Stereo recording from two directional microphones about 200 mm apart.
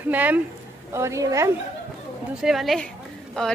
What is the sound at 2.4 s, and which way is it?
Speech, centre (ahead or behind).